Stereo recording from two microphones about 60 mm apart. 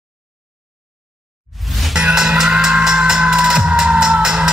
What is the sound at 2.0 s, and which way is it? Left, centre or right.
Music, centre.